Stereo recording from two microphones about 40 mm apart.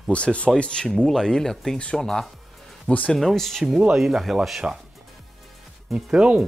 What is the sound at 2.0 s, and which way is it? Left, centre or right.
Music, centre.